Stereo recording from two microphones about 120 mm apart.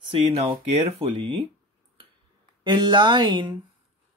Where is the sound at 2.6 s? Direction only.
35° right (ahead or behind).